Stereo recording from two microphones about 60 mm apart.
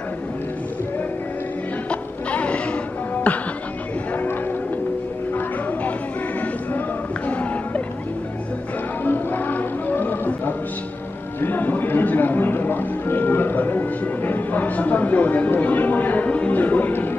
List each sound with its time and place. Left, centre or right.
1.9 s music: left
7.2 s music: left
9.0 s music: left
11.4 s speech: left